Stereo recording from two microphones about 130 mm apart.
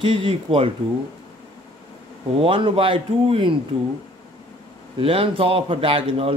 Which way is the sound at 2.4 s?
45° right (ahead or behind).